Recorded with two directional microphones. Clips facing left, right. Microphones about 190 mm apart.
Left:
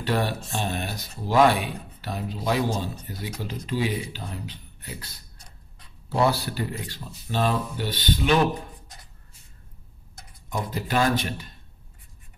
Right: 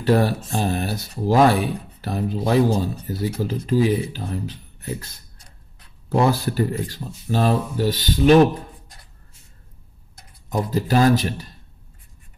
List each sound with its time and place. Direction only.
0.0 s speech: 40° right (ahead or behind)
10.5 s speech: 40° right (ahead or behind)